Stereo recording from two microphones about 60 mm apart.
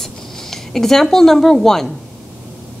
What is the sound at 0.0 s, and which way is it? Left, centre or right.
Speech, centre.